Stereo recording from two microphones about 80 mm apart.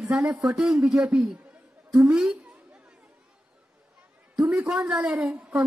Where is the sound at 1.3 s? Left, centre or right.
Centre.